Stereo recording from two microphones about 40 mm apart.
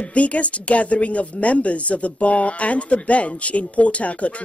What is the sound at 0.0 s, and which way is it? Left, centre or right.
Speech, left.